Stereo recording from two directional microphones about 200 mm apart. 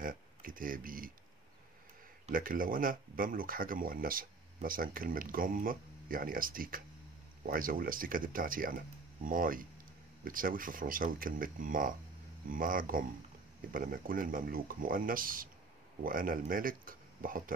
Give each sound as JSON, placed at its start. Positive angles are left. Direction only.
{"t": 0.0, "sound": "speech", "side_deg": -45}
{"t": 2.2, "sound": "speech", "side_deg": -45}